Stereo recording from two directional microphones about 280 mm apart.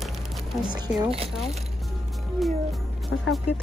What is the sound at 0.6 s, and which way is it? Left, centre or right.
Speech, centre.